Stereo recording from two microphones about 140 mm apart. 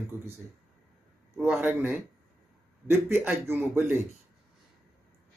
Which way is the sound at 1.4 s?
10° right (ahead or behind).